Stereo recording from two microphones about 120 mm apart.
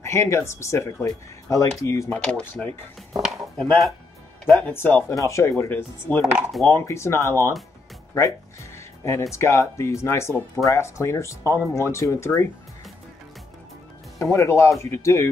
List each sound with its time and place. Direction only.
0.0 s speech: 25° left (ahead or behind)
2.0 s speech: 10° left (ahead or behind)
4.5 s speech: 15° left (ahead or behind)
6.3 s speech: centre (ahead or behind)
6.7 s speech: 20° left (ahead or behind)
8.7 s music: 25° left (ahead or behind)
9.3 s speech: 25° left (ahead or behind)
14.3 s speech: 25° left (ahead or behind)